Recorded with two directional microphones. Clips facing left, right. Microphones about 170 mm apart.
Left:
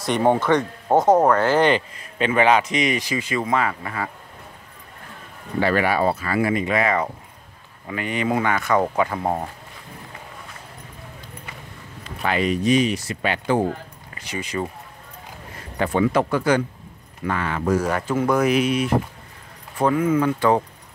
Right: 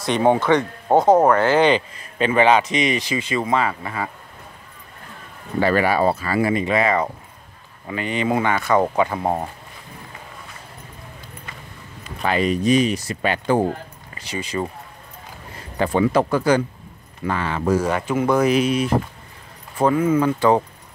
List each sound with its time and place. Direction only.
0.2 s speech: 15° right (ahead or behind)
2.1 s a man's voice: 35° right (ahead or behind)
5.6 s a man's voice: 35° right (ahead or behind); by 9.4 s 20° right (ahead or behind)
12.2 s speech: 35° right (ahead or behind)
15.8 s a man's voice: 30° right (ahead or behind)